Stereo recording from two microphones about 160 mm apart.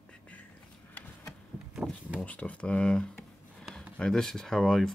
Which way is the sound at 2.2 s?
10° left (ahead or behind).